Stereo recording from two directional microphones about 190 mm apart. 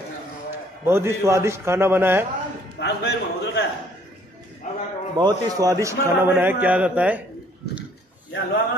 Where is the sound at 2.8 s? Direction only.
60° left (ahead or behind).